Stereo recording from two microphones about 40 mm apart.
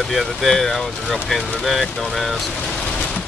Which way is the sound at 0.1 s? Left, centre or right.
Centre.